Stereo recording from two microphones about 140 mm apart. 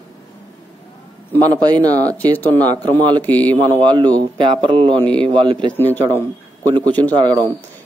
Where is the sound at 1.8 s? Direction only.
50° left (ahead or behind).